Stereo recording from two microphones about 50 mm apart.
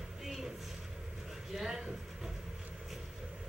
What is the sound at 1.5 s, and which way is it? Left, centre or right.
Vehicle, centre.